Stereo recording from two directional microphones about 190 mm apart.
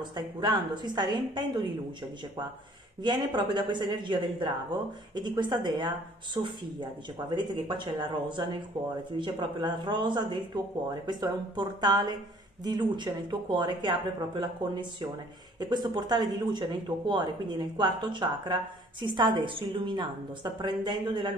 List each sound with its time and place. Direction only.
0.1 s speech: 20° right (ahead or behind)
3.0 s speech: 25° right (ahead or behind)